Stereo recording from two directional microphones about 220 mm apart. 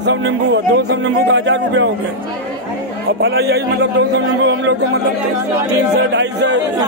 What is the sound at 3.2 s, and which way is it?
Speech, 45° right (ahead or behind).